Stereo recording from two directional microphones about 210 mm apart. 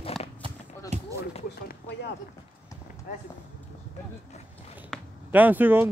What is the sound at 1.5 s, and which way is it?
Speech, 50° left (ahead or behind).